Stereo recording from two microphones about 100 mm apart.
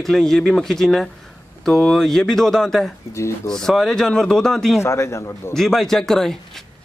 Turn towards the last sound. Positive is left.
turn(degrees=5)  # may be behind; listen again after turning